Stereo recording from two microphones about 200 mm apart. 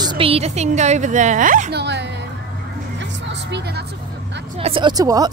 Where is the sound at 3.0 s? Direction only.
60° right (ahead or behind).